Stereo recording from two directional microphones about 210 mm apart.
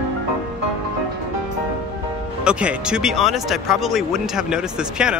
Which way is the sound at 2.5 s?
5° right (ahead or behind).